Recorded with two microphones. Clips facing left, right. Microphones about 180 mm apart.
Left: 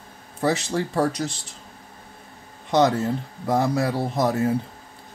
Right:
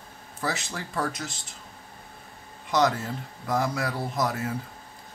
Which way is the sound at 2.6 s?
30° left (ahead or behind).